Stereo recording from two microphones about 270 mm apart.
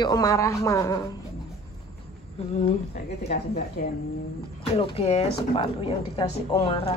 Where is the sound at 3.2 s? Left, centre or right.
Left.